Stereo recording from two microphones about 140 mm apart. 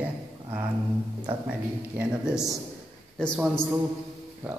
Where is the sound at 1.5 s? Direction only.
10° right (ahead or behind).